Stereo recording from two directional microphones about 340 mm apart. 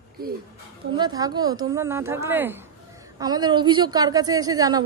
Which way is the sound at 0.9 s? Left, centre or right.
Centre.